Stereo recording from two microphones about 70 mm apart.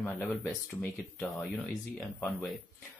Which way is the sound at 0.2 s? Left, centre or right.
Left.